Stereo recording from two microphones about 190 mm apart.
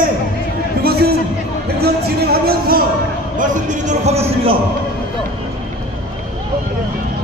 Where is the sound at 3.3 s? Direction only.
40° right (ahead or behind).